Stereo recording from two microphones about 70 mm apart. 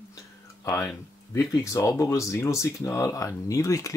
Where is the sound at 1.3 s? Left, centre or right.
Left.